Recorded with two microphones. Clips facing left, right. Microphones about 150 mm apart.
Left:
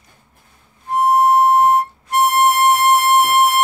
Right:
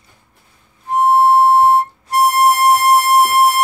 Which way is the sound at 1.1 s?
30° right (ahead or behind).